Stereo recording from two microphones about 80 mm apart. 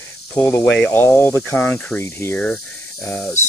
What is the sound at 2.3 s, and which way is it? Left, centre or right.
Speech, centre.